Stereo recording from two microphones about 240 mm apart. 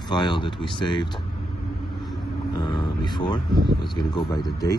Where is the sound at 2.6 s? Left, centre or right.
Centre.